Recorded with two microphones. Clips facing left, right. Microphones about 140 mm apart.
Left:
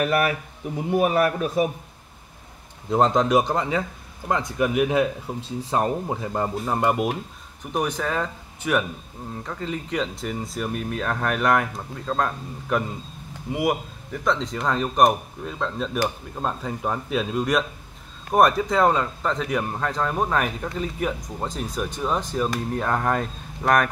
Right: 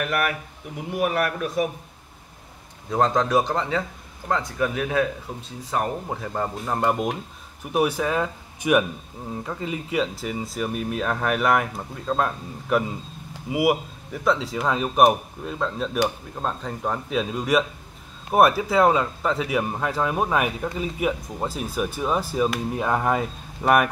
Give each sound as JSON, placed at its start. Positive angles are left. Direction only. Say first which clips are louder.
{"t": 0.0, "sound": "speech", "louder": "left 3 dB", "side_deg": 30}
{"t": 2.9, "sound": "speech", "louder": "left 2 dB", "side_deg": 20}
{"t": 5.7, "sound": "speech", "louder": "left 2 dB", "side_deg": 25}
{"t": 6.2, "sound": "speech", "louder": "even", "side_deg": 15}
{"t": 7.7, "sound": "speech", "louder": "right 3 dB", "side_deg": -5}